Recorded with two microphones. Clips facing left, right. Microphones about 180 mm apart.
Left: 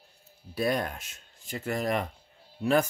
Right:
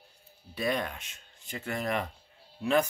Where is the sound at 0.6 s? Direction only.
40° left (ahead or behind).